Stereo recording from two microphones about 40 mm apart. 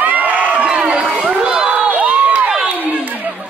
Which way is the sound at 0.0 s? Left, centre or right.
Right.